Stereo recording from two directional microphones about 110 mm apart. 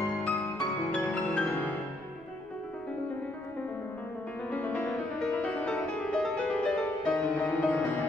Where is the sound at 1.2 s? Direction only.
15° left (ahead or behind).